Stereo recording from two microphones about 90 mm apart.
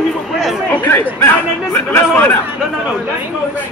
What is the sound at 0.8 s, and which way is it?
Speech, 20° left (ahead or behind).